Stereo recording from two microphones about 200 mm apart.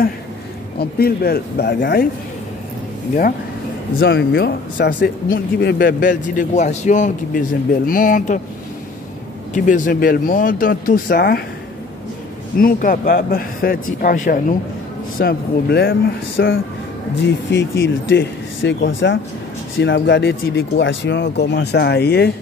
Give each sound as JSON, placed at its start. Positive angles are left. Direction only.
{"t": 0.7, "sound": "speech", "side_deg": 50}
{"t": 4.0, "sound": "speech", "side_deg": 60}
{"t": 9.7, "sound": "speech", "side_deg": 40}
{"t": 12.5, "sound": "speech", "side_deg": 45}